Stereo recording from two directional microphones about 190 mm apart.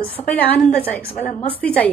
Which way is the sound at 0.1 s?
10° left (ahead or behind).